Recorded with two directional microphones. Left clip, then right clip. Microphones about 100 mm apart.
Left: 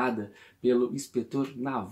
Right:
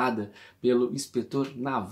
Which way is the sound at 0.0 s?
15° right (ahead or behind).